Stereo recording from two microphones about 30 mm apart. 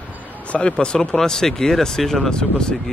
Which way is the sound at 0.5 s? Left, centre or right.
Left.